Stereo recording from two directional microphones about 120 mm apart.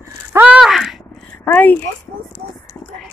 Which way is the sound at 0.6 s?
Centre (ahead or behind).